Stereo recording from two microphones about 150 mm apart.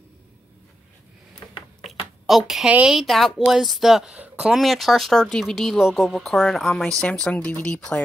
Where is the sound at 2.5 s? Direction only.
5° right (ahead or behind).